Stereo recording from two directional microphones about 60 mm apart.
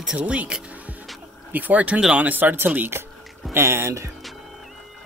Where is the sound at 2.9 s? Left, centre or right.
Right.